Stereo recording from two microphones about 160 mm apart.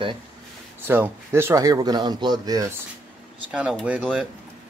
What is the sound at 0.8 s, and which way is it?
Speech, 15° right (ahead or behind).